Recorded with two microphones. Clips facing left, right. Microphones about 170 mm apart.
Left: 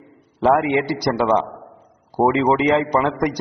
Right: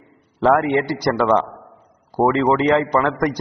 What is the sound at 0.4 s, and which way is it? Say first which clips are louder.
A man's voice: right 1 dB; 15° left (ahead or behind).